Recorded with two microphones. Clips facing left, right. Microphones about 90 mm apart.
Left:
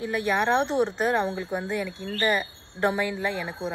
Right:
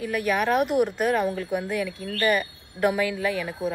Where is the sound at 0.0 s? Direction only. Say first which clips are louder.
Even; 30° left (ahead or behind).